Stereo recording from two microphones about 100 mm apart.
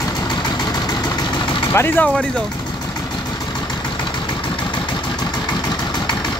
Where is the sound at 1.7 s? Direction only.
25° left (ahead or behind).